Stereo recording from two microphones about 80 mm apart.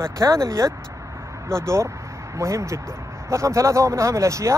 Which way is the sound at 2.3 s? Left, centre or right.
Right.